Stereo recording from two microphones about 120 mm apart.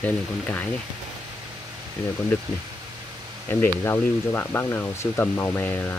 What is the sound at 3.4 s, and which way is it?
Speech, 20° left (ahead or behind).